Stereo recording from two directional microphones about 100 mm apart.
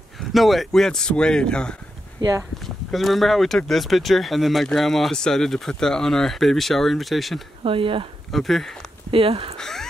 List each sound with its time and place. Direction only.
0.3 s speech: centre (ahead or behind)
7.6 s speech: 65° right (ahead or behind)
8.3 s speech: centre (ahead or behind)
9.1 s speech: 70° right (ahead or behind)
9.6 s speech: 5° left (ahead or behind)